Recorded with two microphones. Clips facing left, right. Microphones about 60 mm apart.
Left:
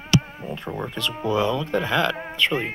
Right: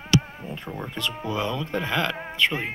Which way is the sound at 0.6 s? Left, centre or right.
Left.